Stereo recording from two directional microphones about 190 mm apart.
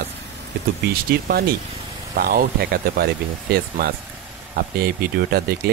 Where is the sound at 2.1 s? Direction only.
55° right (ahead or behind).